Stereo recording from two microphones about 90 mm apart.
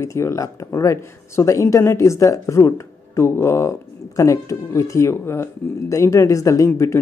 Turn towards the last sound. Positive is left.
turn(degrees=35)  # may be behind; listen again after turning